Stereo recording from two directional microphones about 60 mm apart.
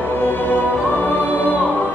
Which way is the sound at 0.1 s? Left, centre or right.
Left.